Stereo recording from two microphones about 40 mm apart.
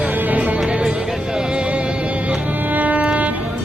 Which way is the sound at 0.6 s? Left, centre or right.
Centre.